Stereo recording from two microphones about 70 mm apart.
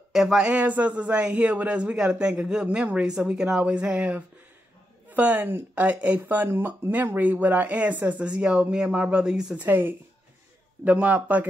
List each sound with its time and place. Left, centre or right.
0.1 s speech: centre
0.5 s speech: right
9.6 s speech: right